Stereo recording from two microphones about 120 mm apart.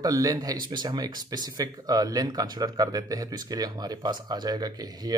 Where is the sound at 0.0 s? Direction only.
30° right (ahead or behind).